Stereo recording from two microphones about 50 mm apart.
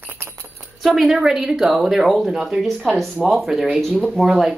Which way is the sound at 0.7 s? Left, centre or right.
Centre.